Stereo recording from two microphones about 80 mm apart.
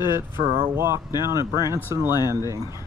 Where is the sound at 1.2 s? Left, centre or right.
Right.